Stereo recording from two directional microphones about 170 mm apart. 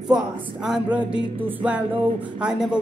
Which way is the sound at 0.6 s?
5° right (ahead or behind).